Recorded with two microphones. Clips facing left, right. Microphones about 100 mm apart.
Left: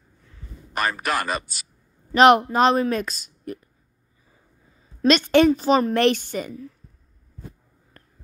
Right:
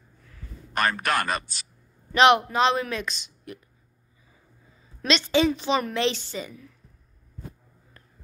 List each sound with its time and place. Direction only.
0.7 s a man's voice: 5° left (ahead or behind)
2.1 s speech: 45° left (ahead or behind)
5.0 s speech: 50° left (ahead or behind)
5.5 s a woman's voice: 35° left (ahead or behind)
5.9 s speech: 55° left (ahead or behind)
8.0 s a sound: 45° left (ahead or behind)